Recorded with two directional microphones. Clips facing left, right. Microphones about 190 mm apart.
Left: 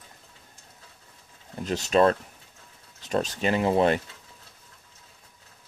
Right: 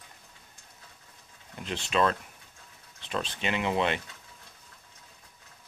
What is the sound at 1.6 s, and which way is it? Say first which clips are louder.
Speech: left 6 dB; 40° left (ahead or behind).